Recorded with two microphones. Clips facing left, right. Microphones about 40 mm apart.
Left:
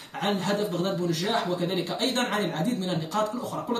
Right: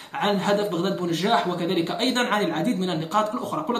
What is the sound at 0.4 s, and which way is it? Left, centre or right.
Speech, right.